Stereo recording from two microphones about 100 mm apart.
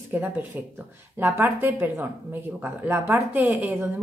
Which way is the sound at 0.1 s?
15° right (ahead or behind).